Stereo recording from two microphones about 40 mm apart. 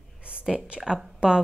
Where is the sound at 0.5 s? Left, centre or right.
Right.